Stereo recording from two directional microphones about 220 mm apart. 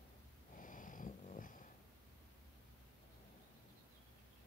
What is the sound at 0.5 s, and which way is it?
Purr, 35° left (ahead or behind).